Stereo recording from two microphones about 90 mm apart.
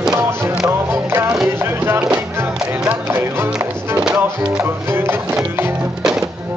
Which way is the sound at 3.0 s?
25° right (ahead or behind).